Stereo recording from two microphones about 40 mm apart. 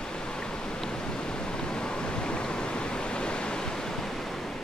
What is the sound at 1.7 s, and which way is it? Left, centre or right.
Waves, left.